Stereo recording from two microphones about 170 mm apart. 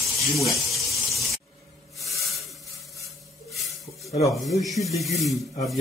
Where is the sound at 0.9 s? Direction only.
Centre (ahead or behind).